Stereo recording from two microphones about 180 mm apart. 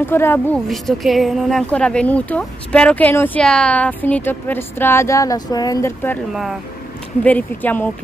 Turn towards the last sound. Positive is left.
turn(degrees=10)  # may be behind; listen again after turning